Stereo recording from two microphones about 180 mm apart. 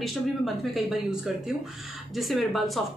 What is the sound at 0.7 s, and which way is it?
A woman's voice, centre (ahead or behind).